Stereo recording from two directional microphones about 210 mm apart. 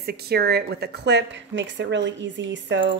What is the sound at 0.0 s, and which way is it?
A woman's voice, 50° right (ahead or behind).